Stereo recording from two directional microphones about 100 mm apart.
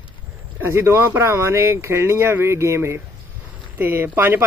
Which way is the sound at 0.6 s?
25° right (ahead or behind).